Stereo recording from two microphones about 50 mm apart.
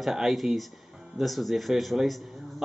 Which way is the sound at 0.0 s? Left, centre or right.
Centre.